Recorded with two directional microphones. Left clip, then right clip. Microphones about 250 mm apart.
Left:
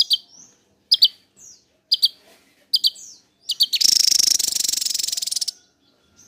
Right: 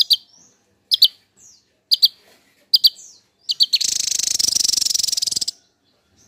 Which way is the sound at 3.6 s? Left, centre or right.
Centre.